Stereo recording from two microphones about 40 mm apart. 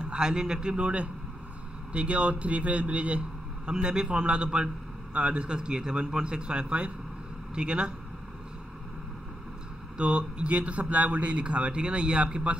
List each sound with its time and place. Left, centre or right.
0.0 s a man's voice: centre
3.7 s a man's voice: right
9.9 s a man's voice: right